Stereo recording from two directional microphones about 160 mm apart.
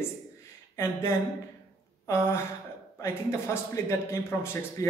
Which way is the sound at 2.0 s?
15° left (ahead or behind).